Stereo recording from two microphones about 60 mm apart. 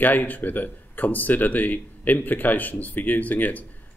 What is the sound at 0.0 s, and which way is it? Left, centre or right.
Speech, left.